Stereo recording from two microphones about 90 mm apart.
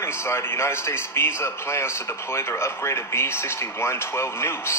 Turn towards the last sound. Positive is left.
turn(degrees=30)  # may be behind; listen again after turning